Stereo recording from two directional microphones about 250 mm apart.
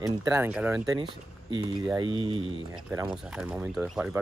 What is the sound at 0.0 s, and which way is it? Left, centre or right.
Speech, centre.